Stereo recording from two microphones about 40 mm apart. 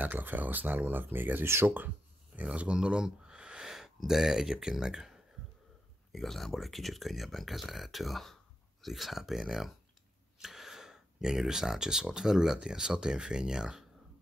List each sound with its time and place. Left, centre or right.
0.0 s speech: right
1.4 s speech: right
2.5 s speech: right
3.6 s a sound: centre
4.1 s speech: centre
6.1 s speech: centre